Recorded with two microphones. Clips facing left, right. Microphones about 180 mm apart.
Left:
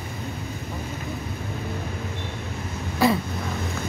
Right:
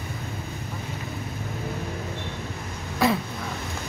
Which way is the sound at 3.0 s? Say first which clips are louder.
Left 2 dB; centre (ahead or behind).